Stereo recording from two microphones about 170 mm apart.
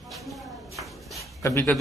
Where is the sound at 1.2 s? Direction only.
20° left (ahead or behind).